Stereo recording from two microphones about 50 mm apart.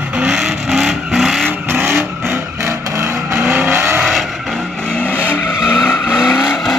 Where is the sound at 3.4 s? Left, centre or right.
Right.